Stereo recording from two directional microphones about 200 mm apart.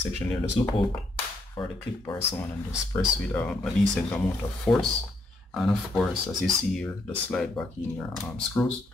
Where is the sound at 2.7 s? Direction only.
Centre (ahead or behind).